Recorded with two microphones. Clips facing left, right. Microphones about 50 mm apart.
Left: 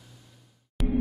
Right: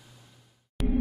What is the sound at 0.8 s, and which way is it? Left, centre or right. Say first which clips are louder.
Music: even; centre.